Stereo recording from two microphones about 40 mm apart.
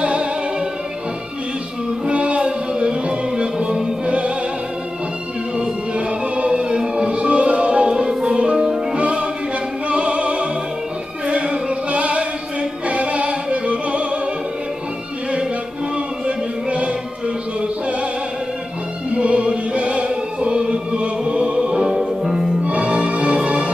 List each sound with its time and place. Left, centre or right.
0.0 s music: right
2.0 s music: right
5.6 s music: right
8.9 s music: right
9.8 s opera: right
11.2 s chant: right
12.8 s music: right
16.3 s music: right
19.1 s music: right
21.9 s music: centre
22.7 s music: right